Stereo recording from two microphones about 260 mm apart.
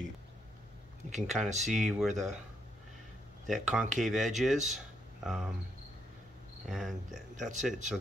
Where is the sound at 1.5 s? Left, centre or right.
Right.